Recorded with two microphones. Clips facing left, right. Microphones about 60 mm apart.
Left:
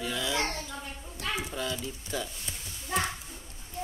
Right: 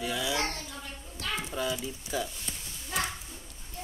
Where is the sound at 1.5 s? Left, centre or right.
Centre.